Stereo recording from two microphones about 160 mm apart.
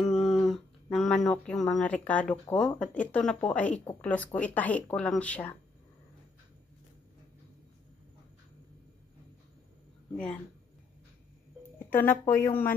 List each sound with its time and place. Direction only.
0.0 s a sound: centre (ahead or behind)
2.5 s speech: 5° left (ahead or behind)
11.8 s speech: 15° left (ahead or behind)